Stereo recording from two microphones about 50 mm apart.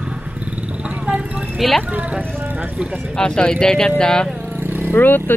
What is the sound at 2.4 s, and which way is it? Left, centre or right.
Vehicle, right.